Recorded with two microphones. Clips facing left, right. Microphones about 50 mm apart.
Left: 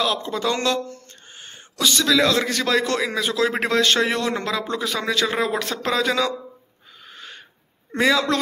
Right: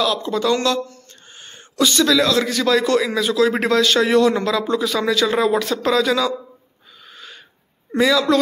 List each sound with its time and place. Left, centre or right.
0.0 s speech: centre
1.3 s a sound: centre
1.8 s speech: centre
2.1 s a man's voice: left
5.6 s a man's voice: left
7.1 s wheeze: left
8.0 s a man's voice: left